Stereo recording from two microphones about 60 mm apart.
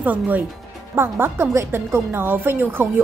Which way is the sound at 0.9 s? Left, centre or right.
Right.